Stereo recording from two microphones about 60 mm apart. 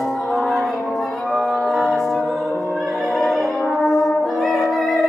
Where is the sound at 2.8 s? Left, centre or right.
Centre.